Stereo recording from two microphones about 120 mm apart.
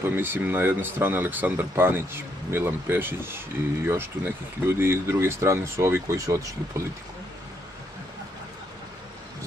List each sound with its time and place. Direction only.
0.0 s speech: 20° right (ahead or behind)